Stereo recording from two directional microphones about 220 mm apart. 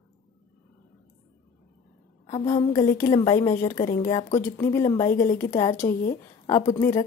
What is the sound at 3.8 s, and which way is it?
Speech, 35° left (ahead or behind).